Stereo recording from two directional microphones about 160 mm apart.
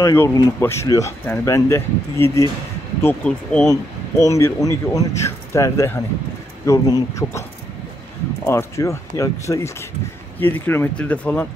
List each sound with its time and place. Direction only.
0.0 s speech: 20° left (ahead or behind)
8.5 s speech: 15° left (ahead or behind)